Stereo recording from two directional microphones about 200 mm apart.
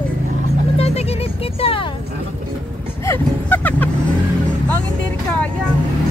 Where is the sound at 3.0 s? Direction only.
10° left (ahead or behind).